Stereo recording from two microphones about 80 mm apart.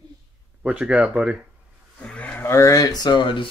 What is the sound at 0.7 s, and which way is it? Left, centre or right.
Speech, centre.